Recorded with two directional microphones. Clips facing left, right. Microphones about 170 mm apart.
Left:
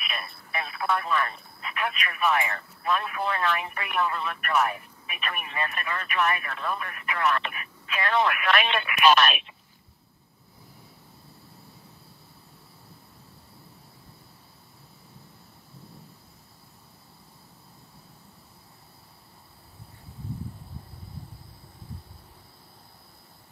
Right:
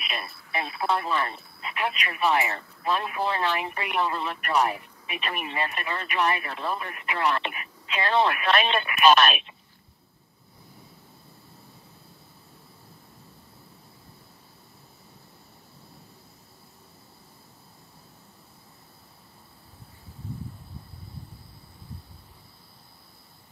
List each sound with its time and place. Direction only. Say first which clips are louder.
0.0 s speech: right 2 dB; 30° right (ahead or behind)